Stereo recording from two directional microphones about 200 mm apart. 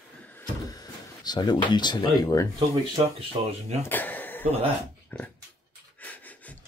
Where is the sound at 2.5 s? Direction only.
25° right (ahead or behind).